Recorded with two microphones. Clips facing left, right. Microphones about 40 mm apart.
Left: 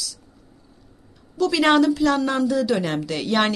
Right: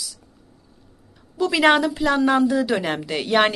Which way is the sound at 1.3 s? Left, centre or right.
Centre.